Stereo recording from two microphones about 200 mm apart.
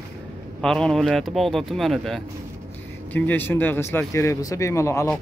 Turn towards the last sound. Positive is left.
turn(degrees=15)  # may be behind; listen again after turning